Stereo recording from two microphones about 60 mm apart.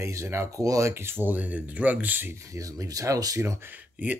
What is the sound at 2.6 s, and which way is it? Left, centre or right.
Speech, right.